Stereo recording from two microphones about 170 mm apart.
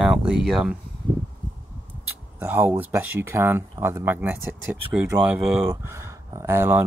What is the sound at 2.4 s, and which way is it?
Speech, 10° right (ahead or behind).